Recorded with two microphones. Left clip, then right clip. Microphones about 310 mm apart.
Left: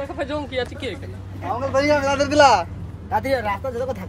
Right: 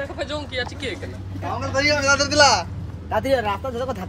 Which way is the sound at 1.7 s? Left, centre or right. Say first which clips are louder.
Even; centre.